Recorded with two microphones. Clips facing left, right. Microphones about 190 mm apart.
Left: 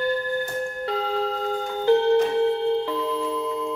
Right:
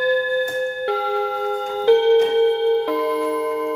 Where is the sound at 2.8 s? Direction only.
90° right.